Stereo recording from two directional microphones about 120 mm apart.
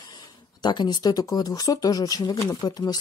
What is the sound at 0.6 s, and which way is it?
Speech, 40° left (ahead or behind).